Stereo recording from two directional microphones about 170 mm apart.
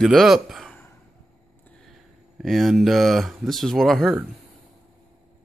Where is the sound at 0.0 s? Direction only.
Centre (ahead or behind).